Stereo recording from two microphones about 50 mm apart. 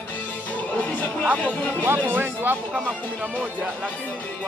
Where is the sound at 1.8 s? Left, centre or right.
Right.